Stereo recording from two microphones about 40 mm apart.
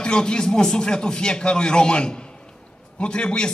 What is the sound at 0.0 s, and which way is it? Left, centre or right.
A man's voice, left.